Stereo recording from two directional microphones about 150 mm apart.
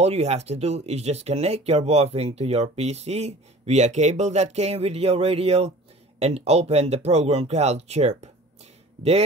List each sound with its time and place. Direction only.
0.0 s speech: 45° right (ahead or behind)